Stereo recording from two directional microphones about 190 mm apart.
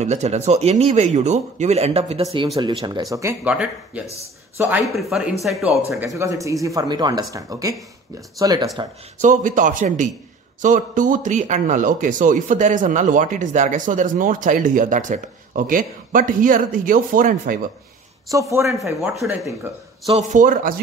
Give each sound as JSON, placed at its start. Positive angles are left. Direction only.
{"t": 0.0, "sound": "speech", "side_deg": -35}
{"t": 6.1, "sound": "speech", "side_deg": -15}
{"t": 9.2, "sound": "speech", "side_deg": -40}
{"t": 18.3, "sound": "speech", "side_deg": -15}
{"t": 18.9, "sound": "speech", "side_deg": 0}
{"t": 20.1, "sound": "speech", "side_deg": -35}